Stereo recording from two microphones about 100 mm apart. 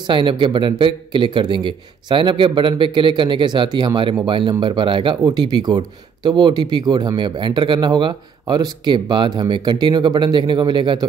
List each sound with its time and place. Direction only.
0.0 s speech: 55° right (ahead or behind)
5.3 s speech: 45° right (ahead or behind)